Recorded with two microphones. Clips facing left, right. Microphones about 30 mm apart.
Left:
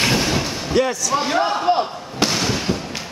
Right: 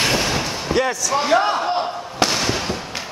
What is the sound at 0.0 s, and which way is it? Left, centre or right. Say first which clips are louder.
Slam: left 1 dB; centre.